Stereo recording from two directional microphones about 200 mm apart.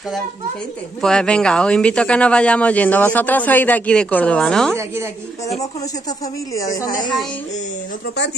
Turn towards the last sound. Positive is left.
turn(degrees=40)  # may be behind; listen again after turning